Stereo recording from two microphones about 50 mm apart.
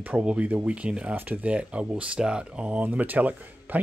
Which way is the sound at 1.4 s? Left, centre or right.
Right.